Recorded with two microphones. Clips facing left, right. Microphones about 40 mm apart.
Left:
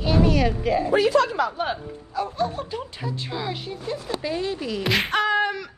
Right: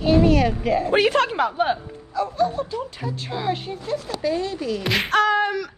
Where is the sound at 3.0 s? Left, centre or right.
Centre.